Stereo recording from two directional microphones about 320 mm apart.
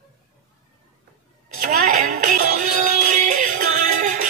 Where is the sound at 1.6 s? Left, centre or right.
Right.